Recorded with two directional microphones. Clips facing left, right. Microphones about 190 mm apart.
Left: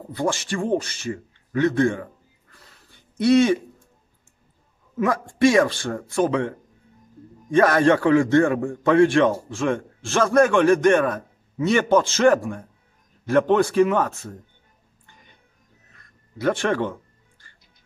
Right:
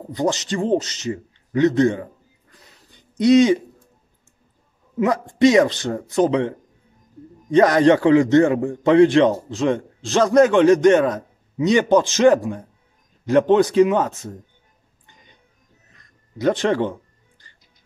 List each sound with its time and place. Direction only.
0.1 s a man's voice: 20° right (ahead or behind)
2.5 s a sound: 15° right (ahead or behind)
4.9 s a man's voice: 20° right (ahead or behind)
7.5 s a man's voice: 20° right (ahead or behind)
16.0 s music: 20° right (ahead or behind)